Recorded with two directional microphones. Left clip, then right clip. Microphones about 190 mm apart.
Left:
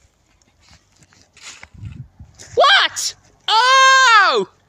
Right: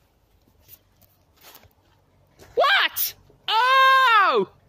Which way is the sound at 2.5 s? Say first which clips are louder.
Left 7 dB; 30° left (ahead or behind).